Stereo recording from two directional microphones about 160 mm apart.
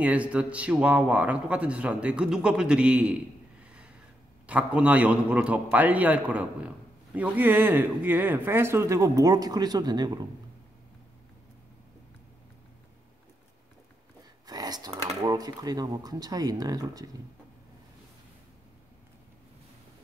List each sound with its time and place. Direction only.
0.0 s speech: 10° right (ahead or behind)
3.6 s a sound: 5° right (ahead or behind)
4.5 s speech: 10° right (ahead or behind); by 10.2 s 25° right (ahead or behind)
14.4 s speech: 25° right (ahead or behind)